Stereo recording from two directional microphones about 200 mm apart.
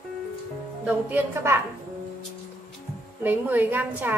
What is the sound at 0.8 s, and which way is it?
Speech, 10° right (ahead or behind).